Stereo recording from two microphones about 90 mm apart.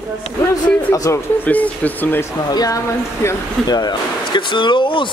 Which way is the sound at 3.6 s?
50° left (ahead or behind).